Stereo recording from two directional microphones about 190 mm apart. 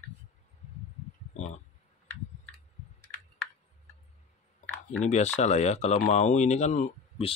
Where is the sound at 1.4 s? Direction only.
40° left (ahead or behind).